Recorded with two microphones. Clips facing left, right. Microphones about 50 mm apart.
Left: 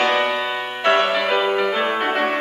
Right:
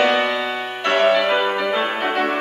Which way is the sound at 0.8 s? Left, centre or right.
Centre.